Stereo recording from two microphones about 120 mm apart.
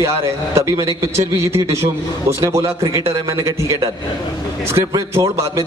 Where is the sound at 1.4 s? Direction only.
25° right (ahead or behind).